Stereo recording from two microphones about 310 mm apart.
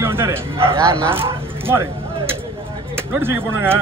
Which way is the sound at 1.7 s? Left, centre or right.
Centre.